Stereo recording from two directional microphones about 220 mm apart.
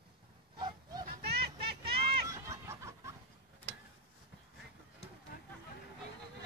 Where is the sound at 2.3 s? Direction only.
15° right (ahead or behind).